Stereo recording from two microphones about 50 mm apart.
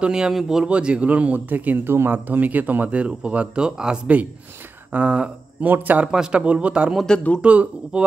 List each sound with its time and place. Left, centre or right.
0.1 s a man's voice: centre
0.7 s speech: right
1.9 s a man's voice: right; by 4.0 s centre
4.9 s a sound: right
5.7 s speech: right
6.1 s a man's voice: centre
6.4 s speech: right
7.1 s a man's voice: centre
7.4 s speech: right